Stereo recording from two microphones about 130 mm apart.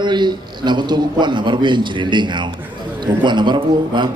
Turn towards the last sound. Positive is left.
turn(degrees=-35)  # may be behind; listen again after turning